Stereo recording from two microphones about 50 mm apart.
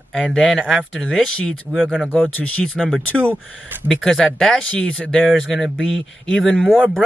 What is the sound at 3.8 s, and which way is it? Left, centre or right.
Speech, centre.